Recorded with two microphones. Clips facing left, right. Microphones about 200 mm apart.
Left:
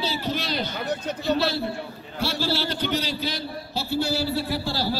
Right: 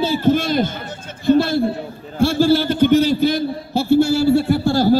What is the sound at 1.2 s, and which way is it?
Speech, 50° right (ahead or behind).